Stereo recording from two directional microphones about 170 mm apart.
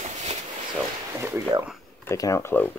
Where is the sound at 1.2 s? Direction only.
15° right (ahead or behind).